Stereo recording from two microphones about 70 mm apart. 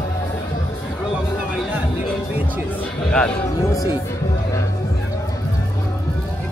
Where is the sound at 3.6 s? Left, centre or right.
Left.